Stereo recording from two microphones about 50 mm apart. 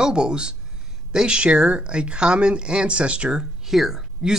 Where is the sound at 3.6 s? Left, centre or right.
Centre.